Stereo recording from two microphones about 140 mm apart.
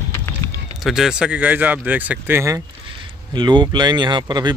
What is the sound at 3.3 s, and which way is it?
Speech, 35° right (ahead or behind).